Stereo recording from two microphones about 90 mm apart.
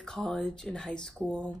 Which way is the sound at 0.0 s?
10° left (ahead or behind).